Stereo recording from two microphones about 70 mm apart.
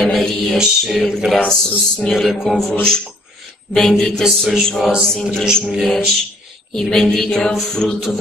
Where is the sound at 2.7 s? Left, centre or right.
Centre.